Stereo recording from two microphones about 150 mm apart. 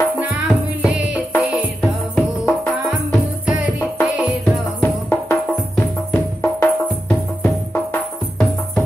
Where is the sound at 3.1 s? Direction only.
10° right (ahead or behind).